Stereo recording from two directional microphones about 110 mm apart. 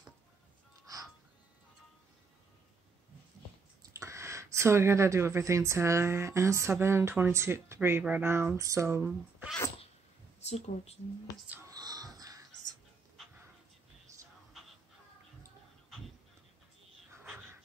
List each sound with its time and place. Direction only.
3.8 s speech: 25° right (ahead or behind)
10.4 s speech: 80° left
11.7 s music: 35° right (ahead or behind)
17.1 s a sound: 20° right (ahead or behind)